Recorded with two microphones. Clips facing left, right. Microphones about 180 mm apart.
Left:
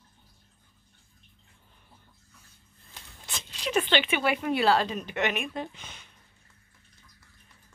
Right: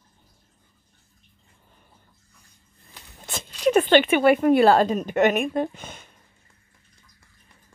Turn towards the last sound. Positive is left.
turn(degrees=-50)  # may be behind; listen again after turning